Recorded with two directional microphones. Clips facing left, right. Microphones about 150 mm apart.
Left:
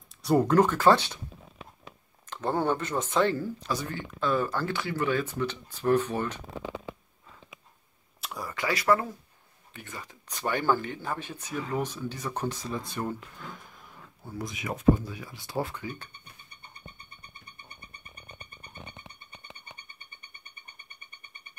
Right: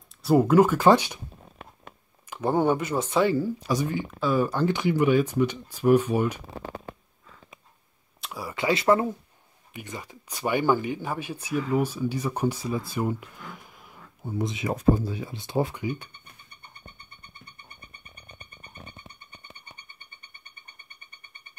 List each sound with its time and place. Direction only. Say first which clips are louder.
0.2 s speech: right 3 dB; 5° right (ahead or behind)
2.2 s speech: right 4 dB; 10° right (ahead or behind)
8.2 s a sound: right 2 dB; 5° right (ahead or behind)
8.5 s speech: right 4 dB; 25° right (ahead or behind); by 13.2 s 10° right (ahead or behind)
14.2 s speech: right 7 dB; 20° right (ahead or behind)